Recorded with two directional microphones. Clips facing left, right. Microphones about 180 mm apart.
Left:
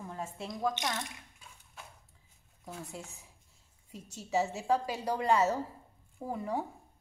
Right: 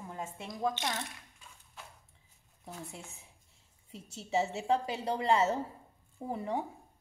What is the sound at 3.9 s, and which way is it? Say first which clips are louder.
A woman's voice: even; 25° right (ahead or behind).